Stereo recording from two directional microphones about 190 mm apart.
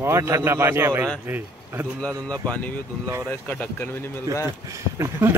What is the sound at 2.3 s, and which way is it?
Speech, 5° left (ahead or behind).